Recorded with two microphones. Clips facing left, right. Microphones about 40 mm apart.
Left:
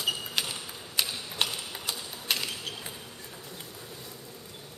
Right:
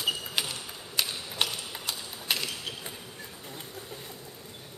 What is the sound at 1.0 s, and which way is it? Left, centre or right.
Typewriter, centre.